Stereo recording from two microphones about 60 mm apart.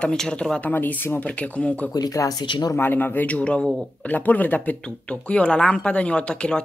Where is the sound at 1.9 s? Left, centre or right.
Left.